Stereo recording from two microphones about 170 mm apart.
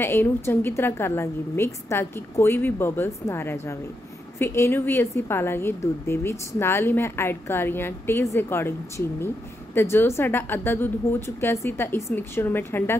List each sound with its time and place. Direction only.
0.0 s a woman's voice: 15° left (ahead or behind)